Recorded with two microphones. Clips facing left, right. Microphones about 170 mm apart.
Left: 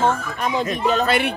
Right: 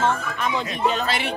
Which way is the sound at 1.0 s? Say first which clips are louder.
Left 6 dB; 55° left (ahead or behind).